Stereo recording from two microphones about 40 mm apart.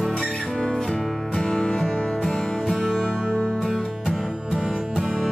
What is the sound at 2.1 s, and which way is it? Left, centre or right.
Music, centre.